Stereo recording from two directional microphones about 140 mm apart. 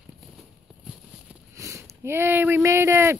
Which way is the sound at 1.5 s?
20° right (ahead or behind).